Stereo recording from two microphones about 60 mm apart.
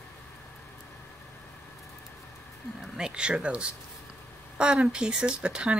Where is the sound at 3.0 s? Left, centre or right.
Centre.